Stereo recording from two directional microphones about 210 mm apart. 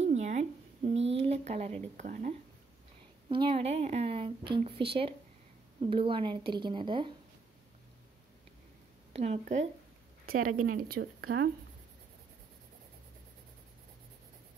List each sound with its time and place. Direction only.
0.0 s a sound: 35° right (ahead or behind)
2.0 s speech: 35° right (ahead or behind)
3.3 s speech: 25° right (ahead or behind)
9.1 s a woman's voice: 30° right (ahead or behind); by 11.5 s 50° right (ahead or behind)